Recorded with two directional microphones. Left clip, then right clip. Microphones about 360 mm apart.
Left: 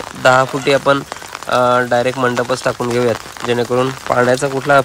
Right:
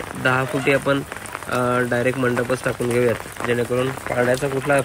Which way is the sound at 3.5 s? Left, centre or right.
Left.